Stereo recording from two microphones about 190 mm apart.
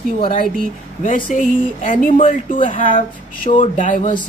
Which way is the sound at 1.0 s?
45° left (ahead or behind).